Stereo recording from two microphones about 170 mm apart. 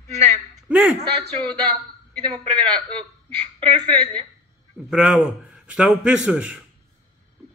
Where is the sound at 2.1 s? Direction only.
5° left (ahead or behind).